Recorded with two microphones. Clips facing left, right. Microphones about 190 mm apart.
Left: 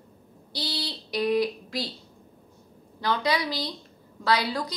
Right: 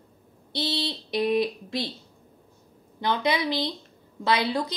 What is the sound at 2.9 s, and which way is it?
Speech, 20° right (ahead or behind).